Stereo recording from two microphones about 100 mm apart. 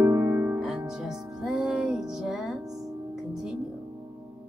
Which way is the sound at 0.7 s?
5° right (ahead or behind).